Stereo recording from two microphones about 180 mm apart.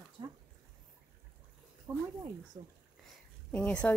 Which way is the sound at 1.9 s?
15° right (ahead or behind).